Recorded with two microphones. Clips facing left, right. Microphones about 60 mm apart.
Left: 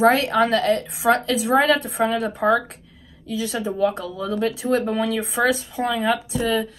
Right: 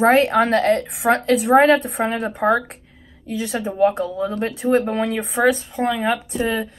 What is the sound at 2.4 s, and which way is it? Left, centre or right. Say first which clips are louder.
Speech: right 1 dB; right.